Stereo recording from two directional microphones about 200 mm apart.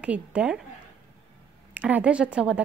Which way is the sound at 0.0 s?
5° right (ahead or behind).